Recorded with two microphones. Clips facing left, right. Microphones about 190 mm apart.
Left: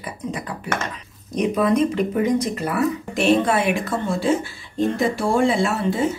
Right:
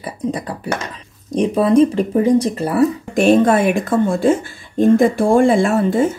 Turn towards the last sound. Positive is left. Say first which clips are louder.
# right 6 dB
turn(degrees=-50)  # may be behind; listen again after turning